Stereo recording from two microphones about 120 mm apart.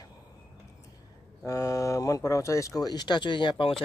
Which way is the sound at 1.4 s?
25° left (ahead or behind).